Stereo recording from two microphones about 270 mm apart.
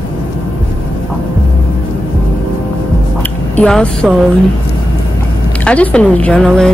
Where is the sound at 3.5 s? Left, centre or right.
Centre.